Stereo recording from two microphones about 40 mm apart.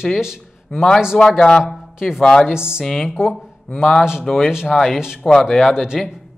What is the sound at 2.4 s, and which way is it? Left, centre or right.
Speech, centre.